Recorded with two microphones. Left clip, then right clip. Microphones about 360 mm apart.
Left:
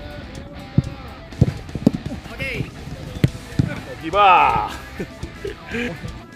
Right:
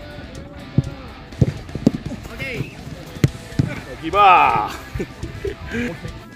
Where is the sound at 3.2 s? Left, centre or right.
Centre.